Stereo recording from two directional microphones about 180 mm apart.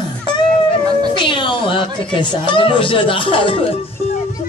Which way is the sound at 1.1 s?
25° left (ahead or behind).